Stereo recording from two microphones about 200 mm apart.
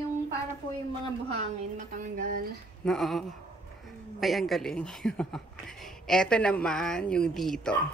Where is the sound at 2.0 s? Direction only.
40° right (ahead or behind).